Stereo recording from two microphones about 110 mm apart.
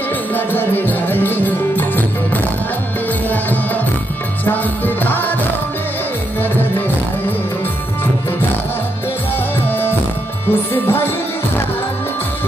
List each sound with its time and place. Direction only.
0.5 s music: 15° left (ahead or behind)
4.5 s music: 15° left (ahead or behind)
10.5 s music: 20° left (ahead or behind)